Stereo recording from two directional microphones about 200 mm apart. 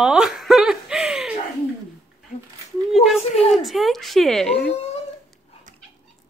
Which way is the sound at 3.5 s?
Centre (ahead or behind).